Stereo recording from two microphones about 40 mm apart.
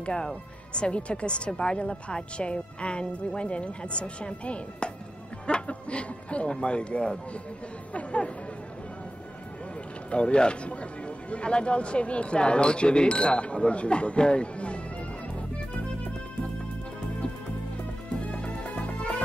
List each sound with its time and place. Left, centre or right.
0.0 s speech: left
10.1 s speech: left
18.2 s music: left